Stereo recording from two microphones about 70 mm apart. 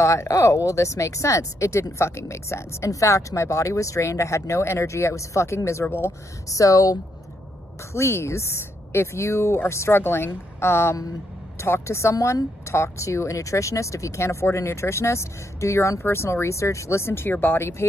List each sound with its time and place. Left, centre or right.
0.0 s speech: left
6.5 s speech: left
7.9 s speech: left